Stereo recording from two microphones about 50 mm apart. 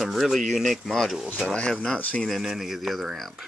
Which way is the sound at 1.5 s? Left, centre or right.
Centre.